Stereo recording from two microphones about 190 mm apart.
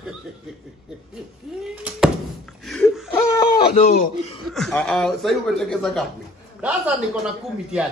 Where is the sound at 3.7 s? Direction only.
40° left (ahead or behind).